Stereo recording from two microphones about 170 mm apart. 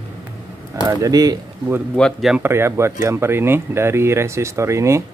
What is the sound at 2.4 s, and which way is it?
Speech, 15° right (ahead or behind).